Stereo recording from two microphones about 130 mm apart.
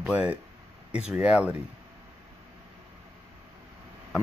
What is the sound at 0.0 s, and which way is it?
Speech, 10° right (ahead or behind).